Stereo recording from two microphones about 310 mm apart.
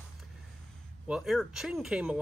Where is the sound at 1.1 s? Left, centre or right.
Centre.